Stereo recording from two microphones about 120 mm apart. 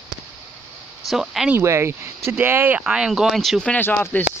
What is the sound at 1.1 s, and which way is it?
Speech, centre (ahead or behind).